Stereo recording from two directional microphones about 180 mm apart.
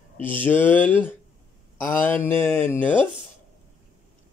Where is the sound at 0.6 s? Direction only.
30° right (ahead or behind).